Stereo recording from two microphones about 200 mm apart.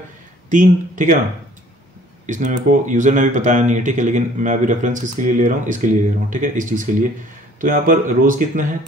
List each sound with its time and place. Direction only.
0.5 s speech: 40° right (ahead or behind)
2.2 s speech: 40° right (ahead or behind)